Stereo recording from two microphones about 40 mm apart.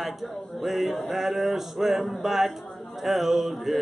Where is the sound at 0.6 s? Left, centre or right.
Centre.